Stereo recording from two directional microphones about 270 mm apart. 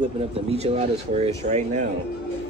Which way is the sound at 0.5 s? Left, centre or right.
Right.